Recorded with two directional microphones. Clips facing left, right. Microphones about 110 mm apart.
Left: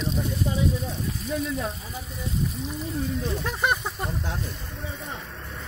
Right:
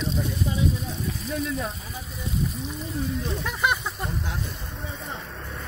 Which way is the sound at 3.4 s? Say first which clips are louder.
Right 1 dB; 40° left (ahead or behind).